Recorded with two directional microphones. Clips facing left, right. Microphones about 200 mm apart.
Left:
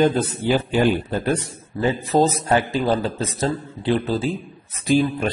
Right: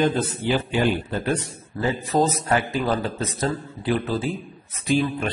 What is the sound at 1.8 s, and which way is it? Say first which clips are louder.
A man's voice: left 3 dB; 25° left (ahead or behind).